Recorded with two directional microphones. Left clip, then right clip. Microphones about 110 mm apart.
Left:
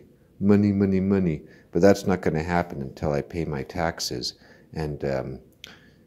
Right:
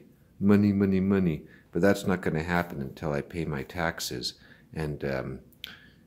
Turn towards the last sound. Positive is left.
turn(degrees=15)  # may be behind; listen again after turning